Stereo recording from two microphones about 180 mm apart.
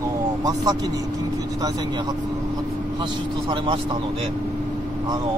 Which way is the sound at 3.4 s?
30° right (ahead or behind).